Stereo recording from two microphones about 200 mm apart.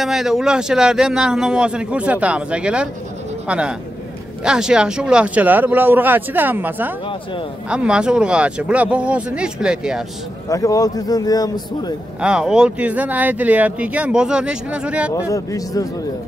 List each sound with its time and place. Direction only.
0.0 s a man's voice: centre (ahead or behind)
10.5 s a man's voice: 15° left (ahead or behind)
12.2 s speech: 5° right (ahead or behind)
15.1 s speech: 15° left (ahead or behind)